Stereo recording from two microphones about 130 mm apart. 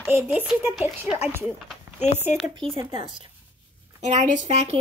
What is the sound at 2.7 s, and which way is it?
Speech, 40° right (ahead or behind).